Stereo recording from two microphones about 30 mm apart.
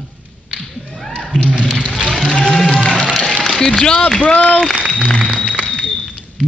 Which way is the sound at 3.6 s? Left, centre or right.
Left.